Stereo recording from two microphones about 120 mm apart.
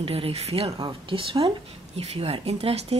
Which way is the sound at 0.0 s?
50° right (ahead or behind).